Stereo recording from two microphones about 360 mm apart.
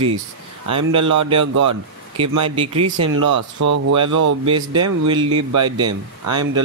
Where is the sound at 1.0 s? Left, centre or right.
Right.